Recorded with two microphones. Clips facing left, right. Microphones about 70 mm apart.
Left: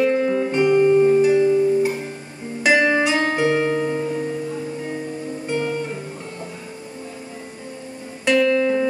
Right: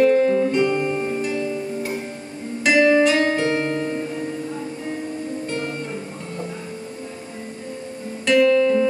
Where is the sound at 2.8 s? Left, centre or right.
Left.